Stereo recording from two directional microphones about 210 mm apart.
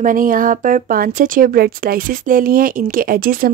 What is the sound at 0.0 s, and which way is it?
Speech, 40° right (ahead or behind).